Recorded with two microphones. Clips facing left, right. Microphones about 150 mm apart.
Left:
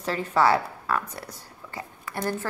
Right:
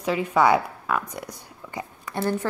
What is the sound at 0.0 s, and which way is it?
A woman's voice, 10° right (ahead or behind).